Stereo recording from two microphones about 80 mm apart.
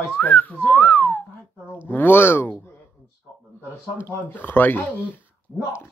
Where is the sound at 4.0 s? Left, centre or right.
Left.